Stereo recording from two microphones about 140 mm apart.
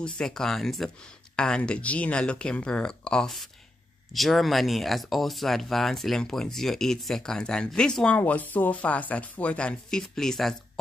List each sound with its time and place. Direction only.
0.0 s speech: 5° left (ahead or behind)